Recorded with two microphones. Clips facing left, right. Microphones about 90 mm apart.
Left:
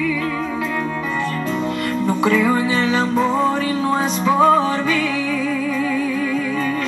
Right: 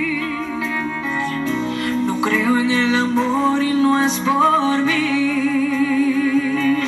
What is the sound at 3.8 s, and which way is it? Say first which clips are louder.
Music: right 2 dB; 5° left (ahead or behind).